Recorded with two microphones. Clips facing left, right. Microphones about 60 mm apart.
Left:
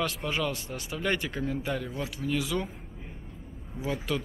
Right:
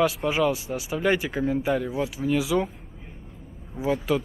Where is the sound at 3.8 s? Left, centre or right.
Centre.